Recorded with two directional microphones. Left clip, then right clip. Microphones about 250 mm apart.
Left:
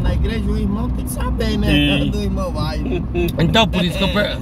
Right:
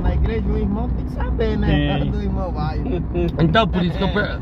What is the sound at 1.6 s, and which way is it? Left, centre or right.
Speech, centre.